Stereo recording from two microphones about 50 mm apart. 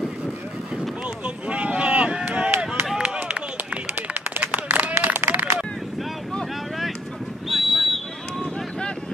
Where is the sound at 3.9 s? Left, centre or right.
Right.